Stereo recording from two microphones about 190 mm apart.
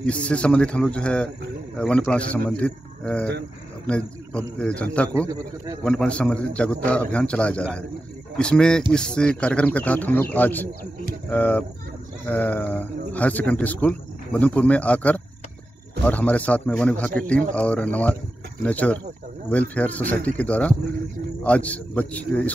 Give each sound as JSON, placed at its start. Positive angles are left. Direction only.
{"t": 0.0, "sound": "a man's voice", "side_deg": 5}
{"t": 5.1, "sound": "a man's voice", "side_deg": -15}
{"t": 5.9, "sound": "a man's voice", "side_deg": 5}